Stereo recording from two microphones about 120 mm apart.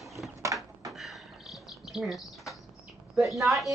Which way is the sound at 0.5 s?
25° right (ahead or behind).